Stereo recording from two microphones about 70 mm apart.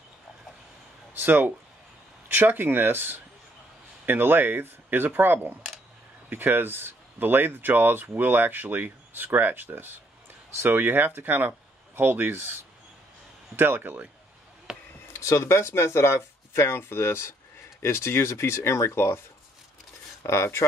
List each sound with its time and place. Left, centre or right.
1.1 s speech: right
13.6 s speech: right
14.7 s basketball bounce: centre
15.1 s speech: left
20.2 s speech: left